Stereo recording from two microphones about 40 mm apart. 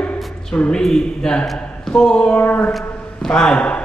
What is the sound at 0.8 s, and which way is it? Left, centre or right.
Speech, centre.